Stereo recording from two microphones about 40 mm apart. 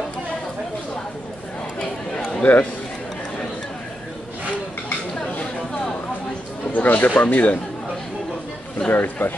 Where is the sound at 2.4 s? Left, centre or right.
Left.